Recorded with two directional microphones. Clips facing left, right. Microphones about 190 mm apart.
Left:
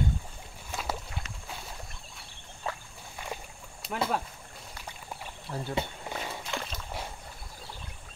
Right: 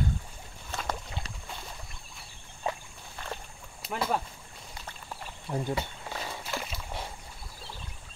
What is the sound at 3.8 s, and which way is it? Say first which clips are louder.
Rowboat: left 1 dB; 5° right (ahead or behind).